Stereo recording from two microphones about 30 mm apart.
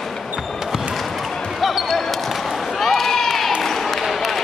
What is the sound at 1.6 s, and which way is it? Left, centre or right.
Basketball bounce, centre.